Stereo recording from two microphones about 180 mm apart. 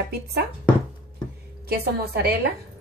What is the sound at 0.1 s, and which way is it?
Speech, 60° right (ahead or behind).